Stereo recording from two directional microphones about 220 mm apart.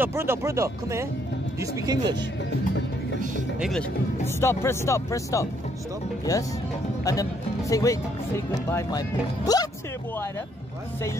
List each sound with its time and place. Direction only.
0.0 s speech: 10° right (ahead or behind)
3.5 s speech: centre (ahead or behind)
4.4 s speech: 10° left (ahead or behind)